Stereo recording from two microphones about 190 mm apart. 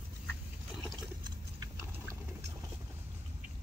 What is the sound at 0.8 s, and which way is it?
Water, 20° right (ahead or behind).